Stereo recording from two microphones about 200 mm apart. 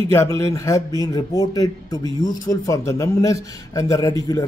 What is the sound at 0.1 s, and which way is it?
Speech, 15° left (ahead or behind).